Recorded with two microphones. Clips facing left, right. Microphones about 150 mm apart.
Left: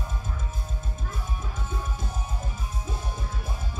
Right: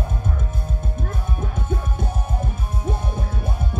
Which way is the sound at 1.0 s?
60° right (ahead or behind).